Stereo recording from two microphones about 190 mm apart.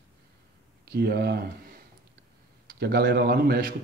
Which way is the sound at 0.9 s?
55° right (ahead or behind).